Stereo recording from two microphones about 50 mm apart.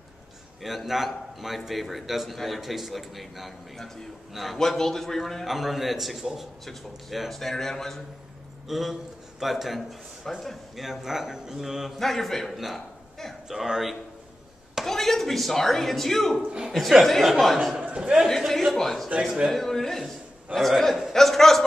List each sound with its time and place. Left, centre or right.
0.6 s a man's voice: centre
12.0 s a man's voice: centre
16.4 s a man's voice: centre
17.0 s a man's voice: centre
17.7 s a man's voice: centre
18.2 s a man's voice: centre